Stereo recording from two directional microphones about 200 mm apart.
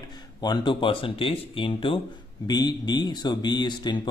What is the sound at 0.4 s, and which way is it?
Speech, 20° left (ahead or behind).